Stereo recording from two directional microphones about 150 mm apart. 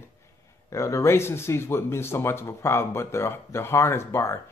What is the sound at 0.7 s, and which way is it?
Speech, 20° left (ahead or behind).